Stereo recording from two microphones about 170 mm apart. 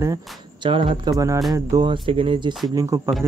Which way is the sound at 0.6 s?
30° right (ahead or behind).